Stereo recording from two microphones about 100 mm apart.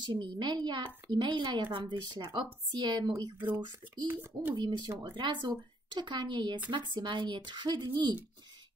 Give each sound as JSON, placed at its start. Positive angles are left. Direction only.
{"t": 0.0, "sound": "speech", "side_deg": -50}
{"t": 4.1, "sound": "a child's voice", "side_deg": -20}
{"t": 4.6, "sound": "speech", "side_deg": -45}